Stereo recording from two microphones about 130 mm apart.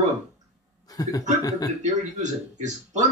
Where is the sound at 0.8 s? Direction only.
30° left (ahead or behind).